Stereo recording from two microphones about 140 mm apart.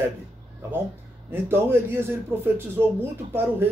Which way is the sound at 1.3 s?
15° right (ahead or behind).